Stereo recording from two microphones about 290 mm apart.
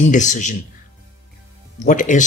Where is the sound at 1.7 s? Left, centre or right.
Left.